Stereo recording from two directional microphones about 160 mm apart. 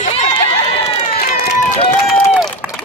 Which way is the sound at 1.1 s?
65° left (ahead or behind).